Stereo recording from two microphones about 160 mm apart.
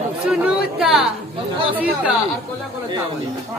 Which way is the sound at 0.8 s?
5° right (ahead or behind).